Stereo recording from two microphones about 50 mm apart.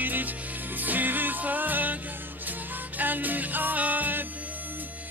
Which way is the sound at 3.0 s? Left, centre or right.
Right.